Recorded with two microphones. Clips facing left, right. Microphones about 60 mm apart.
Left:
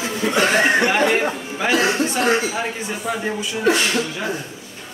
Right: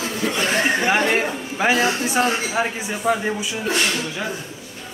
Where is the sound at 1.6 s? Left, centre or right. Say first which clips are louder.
Left 1 dB; centre.